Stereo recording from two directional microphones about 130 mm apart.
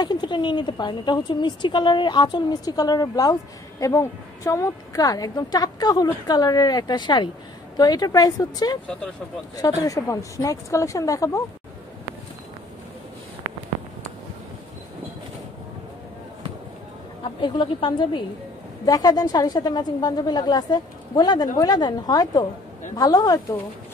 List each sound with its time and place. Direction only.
0.0 s a woman's voice: 35° left (ahead or behind)
17.4 s a woman's voice: 40° left (ahead or behind)